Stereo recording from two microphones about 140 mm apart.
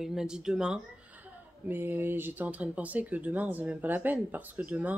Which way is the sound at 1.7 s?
15° right (ahead or behind).